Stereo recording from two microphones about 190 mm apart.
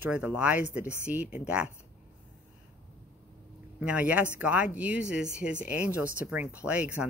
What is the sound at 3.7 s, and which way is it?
Speech, 5° right (ahead or behind).